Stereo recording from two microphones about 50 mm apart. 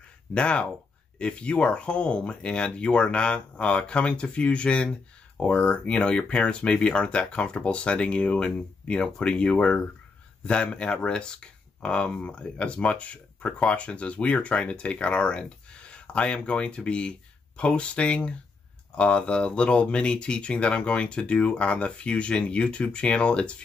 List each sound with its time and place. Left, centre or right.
0.3 s speech: left